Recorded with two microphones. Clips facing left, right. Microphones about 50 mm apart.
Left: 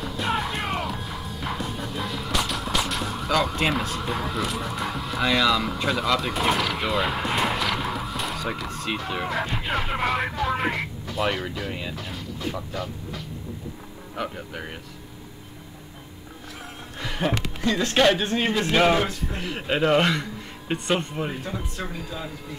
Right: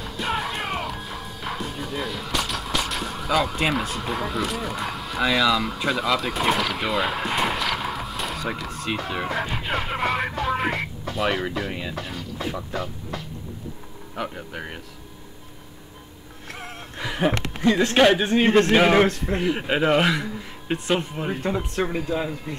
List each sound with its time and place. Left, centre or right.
0.0 s music: centre
11.1 s speech: centre
14.1 s speech: centre
16.9 s a sound: centre
17.6 s speech: right
17.9 s speech: centre
18.9 s speech: right
19.4 s speech: centre
21.4 s speech: right